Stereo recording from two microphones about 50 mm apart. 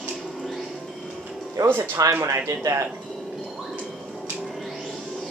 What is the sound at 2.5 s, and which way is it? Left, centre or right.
Speech, right.